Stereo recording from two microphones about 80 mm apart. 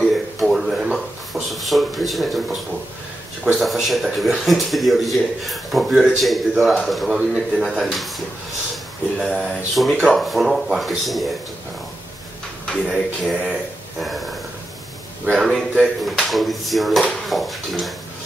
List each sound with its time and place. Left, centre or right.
0.0 s a sound: centre
0.9 s speech: centre
9.2 s speech: centre
12.9 s speech: centre
15.3 s speech: centre